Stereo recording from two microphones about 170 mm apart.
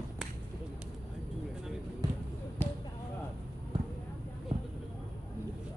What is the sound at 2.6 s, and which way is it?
Basketball bounce, 15° left (ahead or behind).